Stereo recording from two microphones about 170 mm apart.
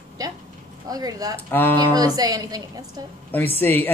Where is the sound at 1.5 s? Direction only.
10° left (ahead or behind).